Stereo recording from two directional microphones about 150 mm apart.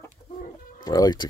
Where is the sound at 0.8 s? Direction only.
25° left (ahead or behind).